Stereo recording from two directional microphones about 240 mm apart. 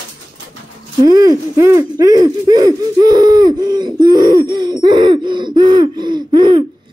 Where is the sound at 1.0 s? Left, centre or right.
Centre.